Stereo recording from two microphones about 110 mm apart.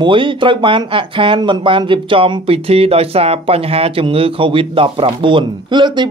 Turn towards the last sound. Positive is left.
turn(degrees=-45)  # may be behind; listen again after turning